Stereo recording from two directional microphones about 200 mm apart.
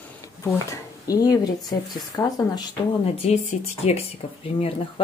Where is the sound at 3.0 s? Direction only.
35° left (ahead or behind).